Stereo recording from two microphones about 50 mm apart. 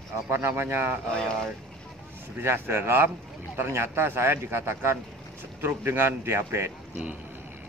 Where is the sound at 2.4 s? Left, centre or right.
Right.